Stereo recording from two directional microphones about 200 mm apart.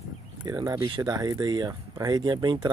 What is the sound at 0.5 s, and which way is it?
Speech, 20° right (ahead or behind).